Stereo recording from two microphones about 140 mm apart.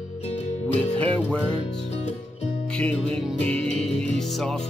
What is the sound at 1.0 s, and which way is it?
Music, 10° left (ahead or behind).